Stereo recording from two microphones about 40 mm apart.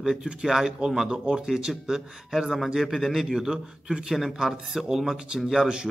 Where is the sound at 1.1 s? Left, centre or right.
Right.